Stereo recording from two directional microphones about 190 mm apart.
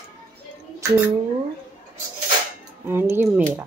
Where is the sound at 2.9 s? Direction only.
10° right (ahead or behind).